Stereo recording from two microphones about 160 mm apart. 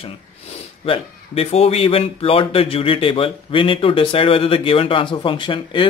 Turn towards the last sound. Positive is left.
turn(degrees=30)  # may be behind; listen again after turning